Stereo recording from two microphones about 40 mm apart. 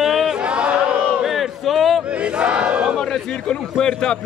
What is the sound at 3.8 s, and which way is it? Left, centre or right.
Speech, centre.